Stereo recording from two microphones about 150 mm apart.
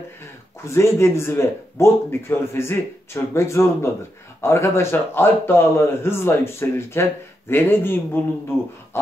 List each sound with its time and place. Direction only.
0.7 s speech: 20° left (ahead or behind)